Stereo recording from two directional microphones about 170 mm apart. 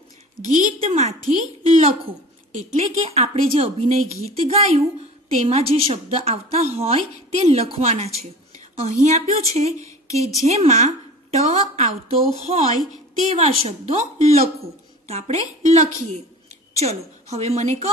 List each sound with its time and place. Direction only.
0.5 s a woman's voice: 45° right (ahead or behind)
10.0 s a woman's voice: 20° left (ahead or behind)
10.4 s a woman's voice: 40° right (ahead or behind)